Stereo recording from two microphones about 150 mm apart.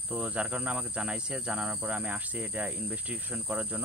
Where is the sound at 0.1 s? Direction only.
5° right (ahead or behind).